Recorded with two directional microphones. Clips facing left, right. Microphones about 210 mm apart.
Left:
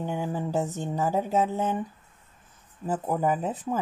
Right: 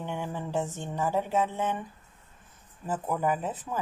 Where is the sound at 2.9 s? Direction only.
40° left (ahead or behind).